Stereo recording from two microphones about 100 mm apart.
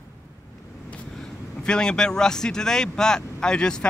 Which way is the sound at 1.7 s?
10° left (ahead or behind).